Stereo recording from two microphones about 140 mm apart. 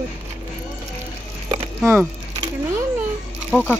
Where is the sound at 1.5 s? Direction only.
20° right (ahead or behind).